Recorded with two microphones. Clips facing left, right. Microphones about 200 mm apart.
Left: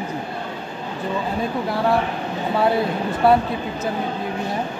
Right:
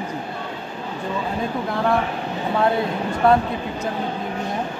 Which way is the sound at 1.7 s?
5° left (ahead or behind).